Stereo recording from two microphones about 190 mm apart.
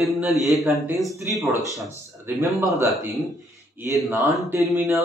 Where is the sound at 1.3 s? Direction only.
10° right (ahead or behind).